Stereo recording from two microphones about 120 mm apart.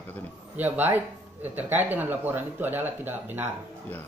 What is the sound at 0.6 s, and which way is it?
A man's voice, 15° right (ahead or behind).